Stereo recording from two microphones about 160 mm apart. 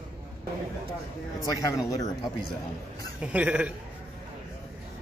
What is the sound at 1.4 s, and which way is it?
Speech, 20° left (ahead or behind).